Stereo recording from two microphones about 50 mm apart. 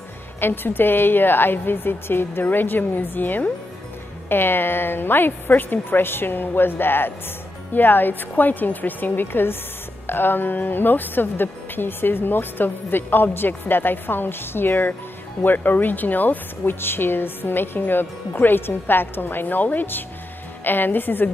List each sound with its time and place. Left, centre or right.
0.4 s a woman's voice: left